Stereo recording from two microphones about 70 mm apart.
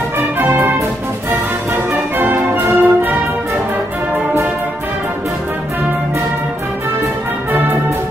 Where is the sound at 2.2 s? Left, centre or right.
Right.